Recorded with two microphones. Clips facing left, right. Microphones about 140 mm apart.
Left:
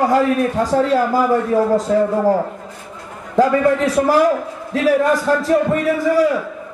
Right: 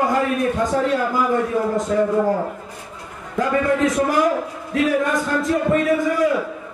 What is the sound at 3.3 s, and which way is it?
A man's voice, 35° left (ahead or behind).